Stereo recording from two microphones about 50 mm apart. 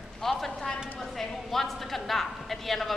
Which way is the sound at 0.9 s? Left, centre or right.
Centre.